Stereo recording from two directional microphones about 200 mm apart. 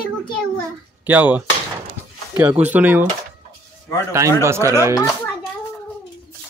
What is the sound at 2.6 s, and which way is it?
Speech, 10° right (ahead or behind).